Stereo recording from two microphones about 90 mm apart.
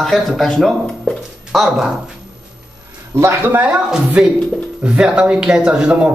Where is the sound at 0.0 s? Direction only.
5° left (ahead or behind).